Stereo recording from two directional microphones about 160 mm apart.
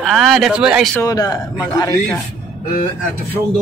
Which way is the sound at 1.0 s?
25° left (ahead or behind).